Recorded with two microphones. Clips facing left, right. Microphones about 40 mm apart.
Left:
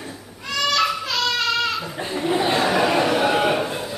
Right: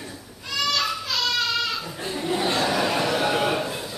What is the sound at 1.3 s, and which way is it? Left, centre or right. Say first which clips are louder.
Goat: left 3 dB; left.